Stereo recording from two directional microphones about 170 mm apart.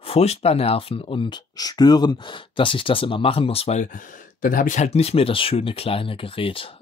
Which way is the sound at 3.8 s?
50° left (ahead or behind).